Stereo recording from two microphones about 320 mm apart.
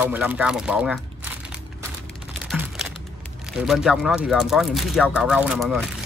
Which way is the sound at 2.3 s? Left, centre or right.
Centre.